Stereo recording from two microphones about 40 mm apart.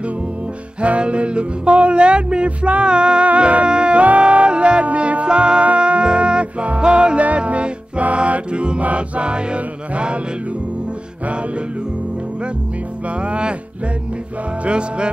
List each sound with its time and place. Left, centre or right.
0.7 s music: right
13.2 s music: right
14.6 s music: right